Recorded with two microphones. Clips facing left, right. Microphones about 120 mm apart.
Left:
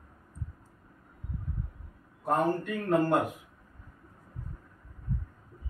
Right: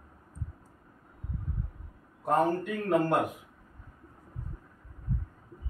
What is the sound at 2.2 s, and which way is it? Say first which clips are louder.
Speech: right 1 dB; centre (ahead or behind).